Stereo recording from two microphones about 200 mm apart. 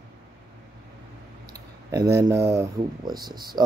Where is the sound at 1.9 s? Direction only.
15° right (ahead or behind).